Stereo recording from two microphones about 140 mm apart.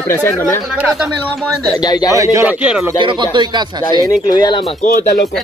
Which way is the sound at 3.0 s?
35° right (ahead or behind).